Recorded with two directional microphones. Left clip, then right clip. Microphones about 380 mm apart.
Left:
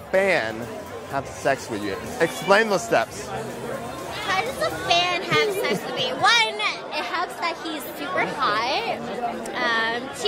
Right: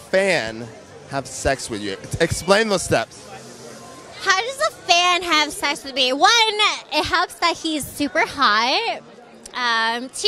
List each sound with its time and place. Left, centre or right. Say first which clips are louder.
0.1 s speech: right 2 dB; centre
4.3 s a child's voice: right 5 dB; right